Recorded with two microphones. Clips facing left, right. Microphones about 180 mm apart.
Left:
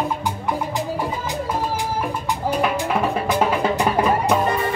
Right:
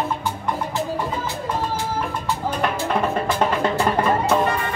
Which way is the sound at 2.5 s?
10° left (ahead or behind).